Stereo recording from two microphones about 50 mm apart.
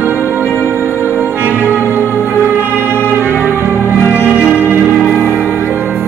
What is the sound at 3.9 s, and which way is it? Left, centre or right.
Music, left.